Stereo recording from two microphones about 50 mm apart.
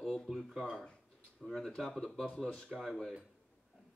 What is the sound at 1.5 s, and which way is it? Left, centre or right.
Speech, centre.